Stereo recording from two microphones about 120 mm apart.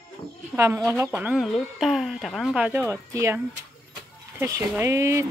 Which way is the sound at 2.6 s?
15° right (ahead or behind).